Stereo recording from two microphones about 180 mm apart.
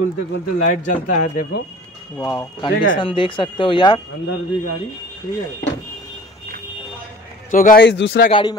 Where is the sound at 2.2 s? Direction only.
25° left (ahead or behind).